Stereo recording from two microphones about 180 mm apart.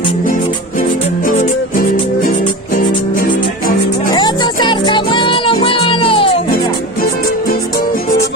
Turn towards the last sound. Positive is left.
turn(degrees=30)  # may be behind; listen again after turning